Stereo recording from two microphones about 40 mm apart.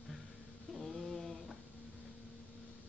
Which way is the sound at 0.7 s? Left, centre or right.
Centre.